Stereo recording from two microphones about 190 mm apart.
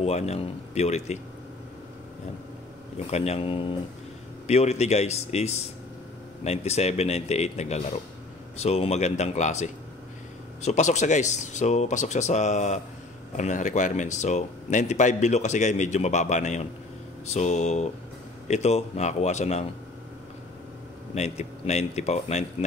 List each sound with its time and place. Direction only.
0.0 s speech: 35° left (ahead or behind)
3.1 s speech: 35° left (ahead or behind)
21.1 s speech: 35° left (ahead or behind)